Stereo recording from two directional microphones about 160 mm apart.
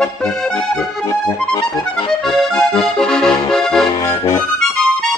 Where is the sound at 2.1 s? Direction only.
Centre (ahead or behind).